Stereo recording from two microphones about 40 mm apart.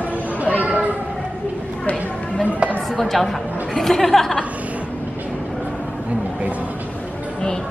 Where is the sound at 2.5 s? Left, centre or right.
Right.